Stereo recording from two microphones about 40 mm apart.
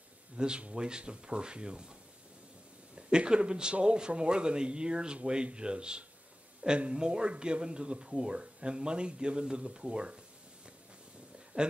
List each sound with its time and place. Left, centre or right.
0.4 s speech: right
3.0 s speech: right
11.5 s speech: right